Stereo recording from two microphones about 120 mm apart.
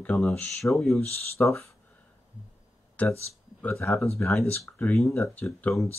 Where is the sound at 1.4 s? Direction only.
15° left (ahead or behind).